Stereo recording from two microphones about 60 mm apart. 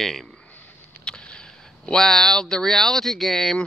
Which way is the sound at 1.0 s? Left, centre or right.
Centre.